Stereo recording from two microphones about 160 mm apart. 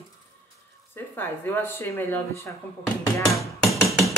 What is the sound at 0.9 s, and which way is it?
Speech, 15° left (ahead or behind).